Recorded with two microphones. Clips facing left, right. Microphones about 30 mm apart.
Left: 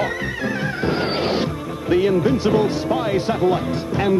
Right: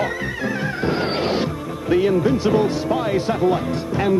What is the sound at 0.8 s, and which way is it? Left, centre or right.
Neigh, left.